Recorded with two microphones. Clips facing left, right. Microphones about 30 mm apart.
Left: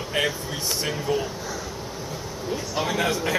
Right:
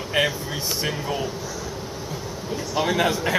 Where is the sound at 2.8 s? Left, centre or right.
Centre.